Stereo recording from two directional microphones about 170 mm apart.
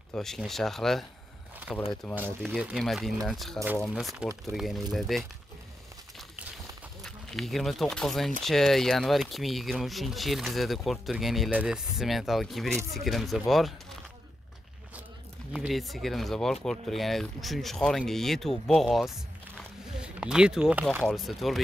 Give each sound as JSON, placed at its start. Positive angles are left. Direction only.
{"t": 0.1, "sound": "speech", "side_deg": 0}
{"t": 2.1, "sound": "speech", "side_deg": -10}
{"t": 7.0, "sound": "speech", "side_deg": 0}
{"t": 15.5, "sound": "speech", "side_deg": 0}